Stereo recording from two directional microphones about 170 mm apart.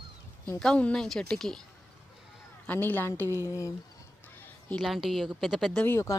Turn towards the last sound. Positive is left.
turn(degrees=15)  # may be behind; listen again after turning